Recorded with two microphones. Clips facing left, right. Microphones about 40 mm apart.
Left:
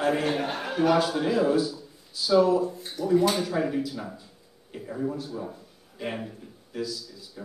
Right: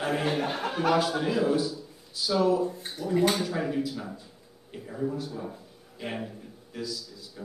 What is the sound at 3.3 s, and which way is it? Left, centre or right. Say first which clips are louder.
A man's voice: left 2 dB; centre.